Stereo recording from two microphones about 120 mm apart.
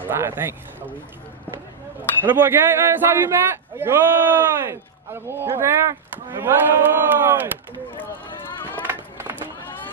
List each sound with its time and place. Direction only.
0.0 s speech: 20° right (ahead or behind)
2.2 s a man's voice: 15° right (ahead or behind)
8.8 s run: 15° right (ahead or behind)